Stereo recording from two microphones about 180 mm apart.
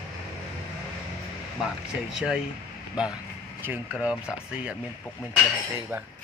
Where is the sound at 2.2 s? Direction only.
5° right (ahead or behind).